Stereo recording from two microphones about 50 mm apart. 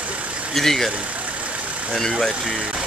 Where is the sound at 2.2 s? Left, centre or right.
Centre.